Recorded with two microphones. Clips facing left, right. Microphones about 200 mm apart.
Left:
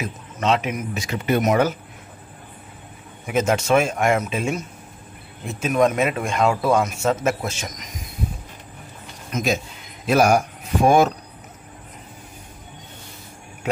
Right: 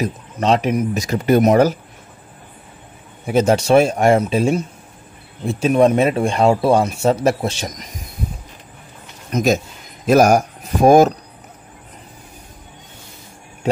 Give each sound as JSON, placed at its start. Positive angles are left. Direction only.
{"t": 0.0, "sound": "a man's voice", "side_deg": -35}
{"t": 3.3, "sound": "a man's voice", "side_deg": -35}
{"t": 9.3, "sound": "a man's voice", "side_deg": -45}